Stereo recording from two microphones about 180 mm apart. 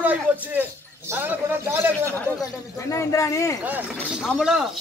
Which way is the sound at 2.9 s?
15° left (ahead or behind).